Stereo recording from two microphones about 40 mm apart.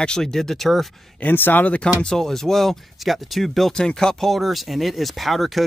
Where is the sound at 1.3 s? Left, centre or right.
Left.